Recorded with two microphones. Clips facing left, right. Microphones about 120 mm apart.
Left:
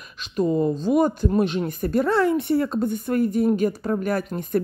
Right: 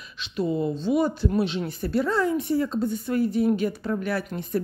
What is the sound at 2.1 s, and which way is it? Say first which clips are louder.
A woman's voice: left 3 dB; 65° left (ahead or behind).